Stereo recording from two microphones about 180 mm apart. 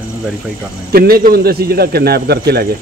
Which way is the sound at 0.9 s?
55° right (ahead or behind).